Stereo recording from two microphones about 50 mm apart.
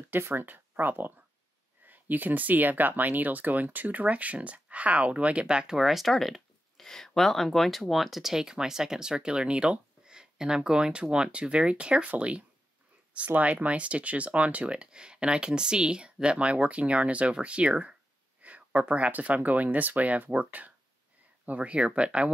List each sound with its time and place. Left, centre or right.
0.1 s speech: right; by 5.8 s centre
5.8 s speech: centre; by 12.4 s right
13.6 s speech: right